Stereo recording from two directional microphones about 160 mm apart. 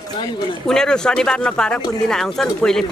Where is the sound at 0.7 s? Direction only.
5° left (ahead or behind).